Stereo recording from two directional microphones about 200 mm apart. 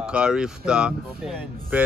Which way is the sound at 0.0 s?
5° right (ahead or behind).